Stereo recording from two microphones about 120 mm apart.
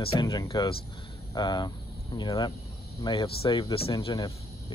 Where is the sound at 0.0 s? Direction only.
50° left (ahead or behind).